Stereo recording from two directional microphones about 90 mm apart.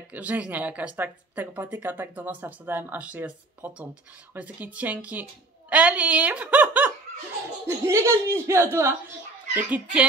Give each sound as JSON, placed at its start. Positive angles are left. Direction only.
{"t": 0.1, "sound": "a woman's voice", "side_deg": -15}
{"t": 7.6, "sound": "speech", "side_deg": -30}